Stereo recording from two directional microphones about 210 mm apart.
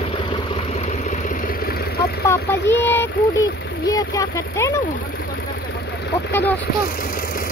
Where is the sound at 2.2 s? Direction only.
15° left (ahead or behind).